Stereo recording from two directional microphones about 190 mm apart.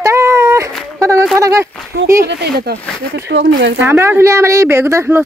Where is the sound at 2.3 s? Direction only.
60° right (ahead or behind).